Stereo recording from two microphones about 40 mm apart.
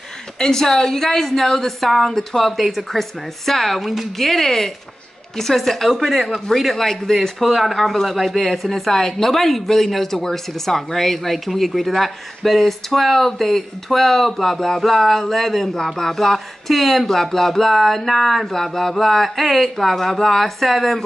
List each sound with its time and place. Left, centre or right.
0.4 s a woman's voice: centre
3.8 s a woman's voice: centre